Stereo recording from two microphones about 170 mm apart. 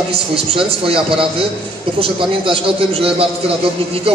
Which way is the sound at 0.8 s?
30° right (ahead or behind).